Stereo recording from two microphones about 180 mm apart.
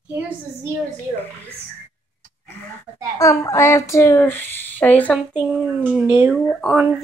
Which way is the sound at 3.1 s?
15° left (ahead or behind).